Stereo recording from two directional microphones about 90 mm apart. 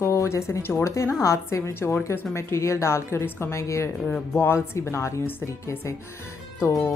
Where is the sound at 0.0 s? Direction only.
30° left (ahead or behind).